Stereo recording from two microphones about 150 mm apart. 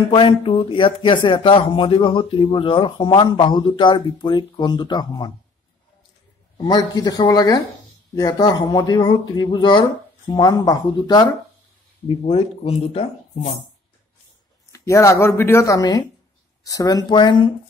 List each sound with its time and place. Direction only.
0.1 s speech: 35° left (ahead or behind)
6.6 s speech: 25° left (ahead or behind)
12.1 s speech: 40° left (ahead or behind)
14.7 s speech: 20° left (ahead or behind)